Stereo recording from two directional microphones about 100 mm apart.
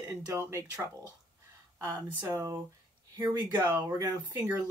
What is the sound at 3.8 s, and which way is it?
Speech, 30° right (ahead or behind).